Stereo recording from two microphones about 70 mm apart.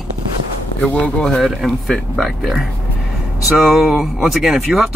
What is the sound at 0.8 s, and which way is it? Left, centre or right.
Speech, centre.